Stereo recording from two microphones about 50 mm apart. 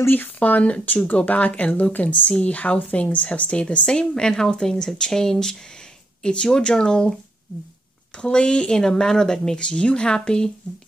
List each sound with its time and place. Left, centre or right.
0.0 s speech: left
0.4 s speech: left
8.2 s speech: centre